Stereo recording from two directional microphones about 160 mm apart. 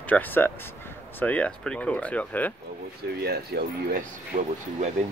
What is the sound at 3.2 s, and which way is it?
Speech, 80° right.